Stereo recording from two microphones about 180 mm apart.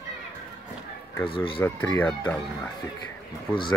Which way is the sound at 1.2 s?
30° left (ahead or behind).